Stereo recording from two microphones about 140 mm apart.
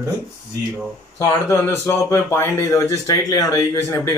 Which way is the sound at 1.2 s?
20° left (ahead or behind).